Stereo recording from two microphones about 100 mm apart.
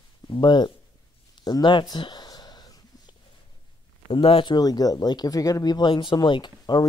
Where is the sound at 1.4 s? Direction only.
45° left (ahead or behind).